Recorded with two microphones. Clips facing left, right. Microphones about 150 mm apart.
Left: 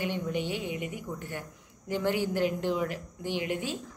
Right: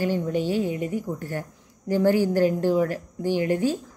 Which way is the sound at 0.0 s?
40° right (ahead or behind).